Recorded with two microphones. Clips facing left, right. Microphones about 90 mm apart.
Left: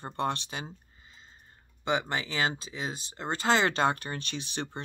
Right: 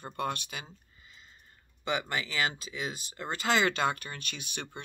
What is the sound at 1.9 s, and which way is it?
Speech, 25° left (ahead or behind).